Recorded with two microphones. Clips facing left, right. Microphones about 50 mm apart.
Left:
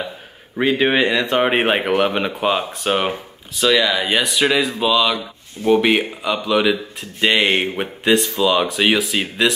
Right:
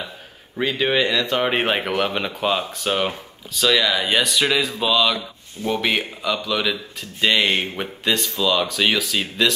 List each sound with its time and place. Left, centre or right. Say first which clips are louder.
0.6 s speech: left 4 dB; left
3.6 s speech: left 2 dB; centre